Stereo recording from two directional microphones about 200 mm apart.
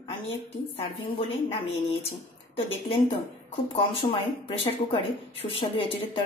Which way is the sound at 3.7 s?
25° left (ahead or behind).